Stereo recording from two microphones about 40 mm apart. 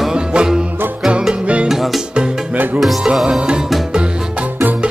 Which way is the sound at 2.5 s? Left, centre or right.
Right.